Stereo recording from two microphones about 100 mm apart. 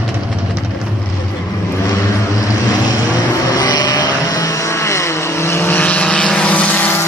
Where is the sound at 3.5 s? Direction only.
45° left (ahead or behind); by 7.0 s 15° left (ahead or behind).